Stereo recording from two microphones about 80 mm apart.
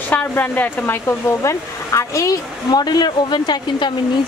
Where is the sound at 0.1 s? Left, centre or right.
Left.